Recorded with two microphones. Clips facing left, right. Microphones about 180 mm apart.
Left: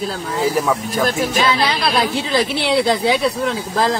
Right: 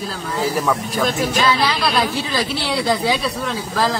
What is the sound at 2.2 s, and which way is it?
Speech, 20° left (ahead or behind).